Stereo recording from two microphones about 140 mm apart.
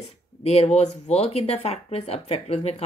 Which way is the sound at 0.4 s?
50° left (ahead or behind).